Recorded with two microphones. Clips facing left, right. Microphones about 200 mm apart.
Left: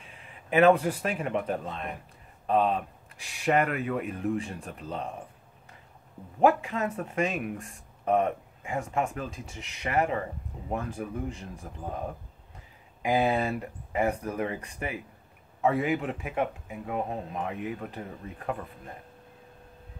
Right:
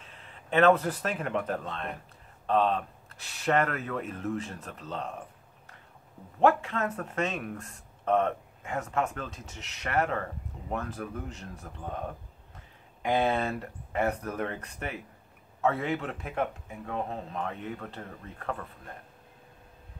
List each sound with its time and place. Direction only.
0.1 s speech: 10° left (ahead or behind)
6.4 s speech: 10° left (ahead or behind)